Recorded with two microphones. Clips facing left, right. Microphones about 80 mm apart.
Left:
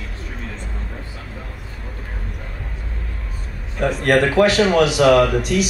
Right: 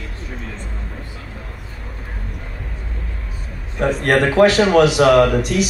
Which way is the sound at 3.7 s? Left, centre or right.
Right.